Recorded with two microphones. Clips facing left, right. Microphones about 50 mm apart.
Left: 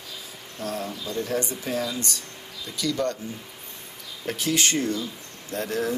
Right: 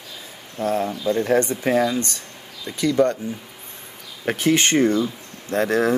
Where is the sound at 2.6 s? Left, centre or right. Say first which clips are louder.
Right 8 dB; right.